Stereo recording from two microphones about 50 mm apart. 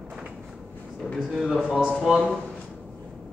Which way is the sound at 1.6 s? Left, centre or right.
Right.